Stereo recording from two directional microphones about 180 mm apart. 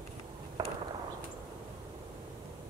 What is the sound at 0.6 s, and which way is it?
Fireworks, 20° right (ahead or behind).